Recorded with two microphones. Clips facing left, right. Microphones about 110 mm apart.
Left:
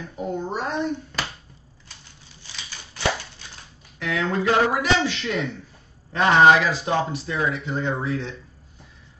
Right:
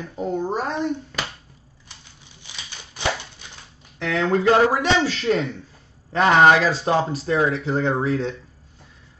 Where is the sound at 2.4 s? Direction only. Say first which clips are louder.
Even; 15° right (ahead or behind).